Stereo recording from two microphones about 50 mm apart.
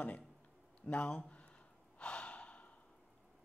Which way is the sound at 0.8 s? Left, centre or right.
Left.